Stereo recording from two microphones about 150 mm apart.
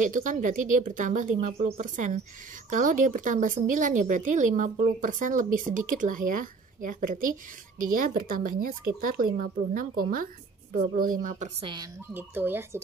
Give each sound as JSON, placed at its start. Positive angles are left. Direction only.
{"t": 0.0, "sound": "speech", "side_deg": -60}
{"t": 11.6, "sound": "speech", "side_deg": -30}
{"t": 12.1, "sound": "speech", "side_deg": -15}